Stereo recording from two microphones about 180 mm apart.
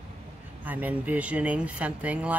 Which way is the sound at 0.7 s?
10° right (ahead or behind).